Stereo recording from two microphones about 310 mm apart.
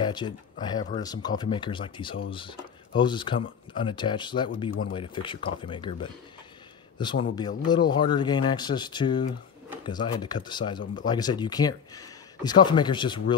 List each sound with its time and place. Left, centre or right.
0.0 s a man's voice: centre